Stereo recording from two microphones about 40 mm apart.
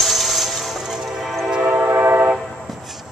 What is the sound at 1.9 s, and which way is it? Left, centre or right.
Train, right.